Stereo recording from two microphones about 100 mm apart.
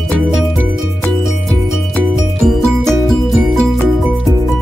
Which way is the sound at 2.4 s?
Centre (ahead or behind).